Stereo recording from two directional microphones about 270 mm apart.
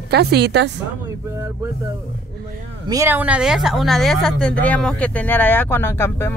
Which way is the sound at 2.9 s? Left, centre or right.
Centre.